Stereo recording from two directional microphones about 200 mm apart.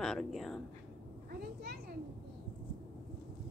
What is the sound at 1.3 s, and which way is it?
Speech, 50° right (ahead or behind).